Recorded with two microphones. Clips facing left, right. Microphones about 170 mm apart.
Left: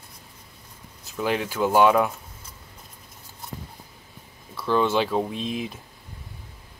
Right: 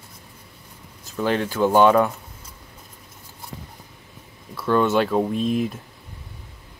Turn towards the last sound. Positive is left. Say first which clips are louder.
# right 7 dB
turn(degrees=-45)  # may be behind; listen again after turning